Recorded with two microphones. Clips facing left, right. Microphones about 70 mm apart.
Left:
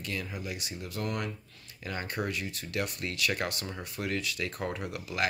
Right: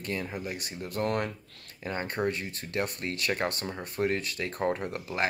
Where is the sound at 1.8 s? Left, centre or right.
Right.